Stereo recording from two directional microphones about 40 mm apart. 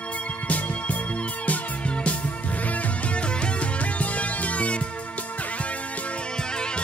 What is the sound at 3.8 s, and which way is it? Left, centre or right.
Music, left.